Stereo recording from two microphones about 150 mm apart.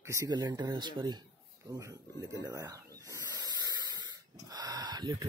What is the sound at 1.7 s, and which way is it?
Snake, 20° right (ahead or behind).